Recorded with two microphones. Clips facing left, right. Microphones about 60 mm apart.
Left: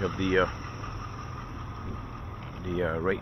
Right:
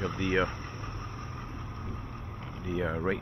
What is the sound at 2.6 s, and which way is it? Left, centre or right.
Speech, left.